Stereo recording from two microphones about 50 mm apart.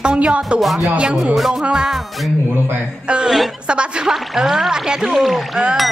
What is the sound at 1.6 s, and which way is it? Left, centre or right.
Music, centre.